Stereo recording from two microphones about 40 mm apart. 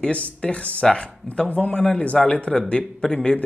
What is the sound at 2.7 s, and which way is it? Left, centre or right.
Speech, centre.